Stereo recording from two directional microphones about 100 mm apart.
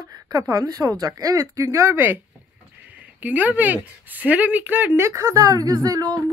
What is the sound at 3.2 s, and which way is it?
Speech, 15° right (ahead or behind).